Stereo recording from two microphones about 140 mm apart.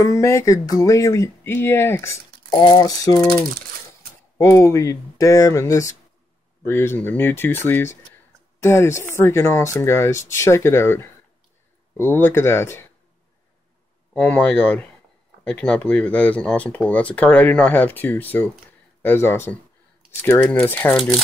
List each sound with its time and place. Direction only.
0.0 s speech: 20° left (ahead or behind)
2.5 s speech: 30° left (ahead or behind)
4.4 s speech: 25° left (ahead or behind)
14.1 s speech: 10° left (ahead or behind)